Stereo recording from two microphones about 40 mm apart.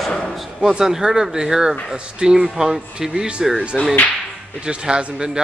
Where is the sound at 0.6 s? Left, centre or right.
Centre.